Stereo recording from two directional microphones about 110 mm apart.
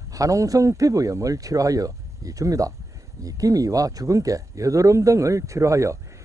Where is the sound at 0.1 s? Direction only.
30° right (ahead or behind).